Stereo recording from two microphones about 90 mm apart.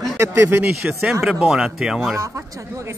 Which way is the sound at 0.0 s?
30° right (ahead or behind).